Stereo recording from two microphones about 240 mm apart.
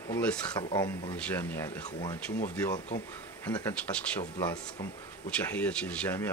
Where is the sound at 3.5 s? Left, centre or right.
Centre.